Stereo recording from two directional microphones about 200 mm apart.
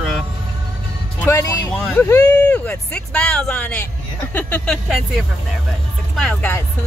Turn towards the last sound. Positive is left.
turn(degrees=5)  # may be behind; listen again after turning